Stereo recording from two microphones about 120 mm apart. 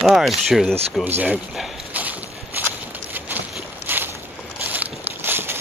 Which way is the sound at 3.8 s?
15° right (ahead or behind).